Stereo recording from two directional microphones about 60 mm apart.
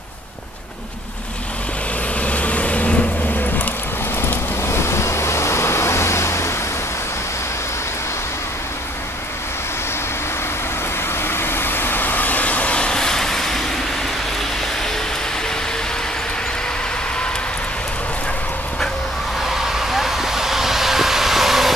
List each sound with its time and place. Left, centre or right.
2.2 s vehicle: left
4.2 s vehicle: left
11.1 s vehicle: left; by 13.7 s centre
19.4 s vehicle: centre